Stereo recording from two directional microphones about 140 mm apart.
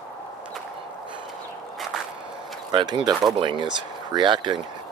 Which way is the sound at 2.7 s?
30° right (ahead or behind).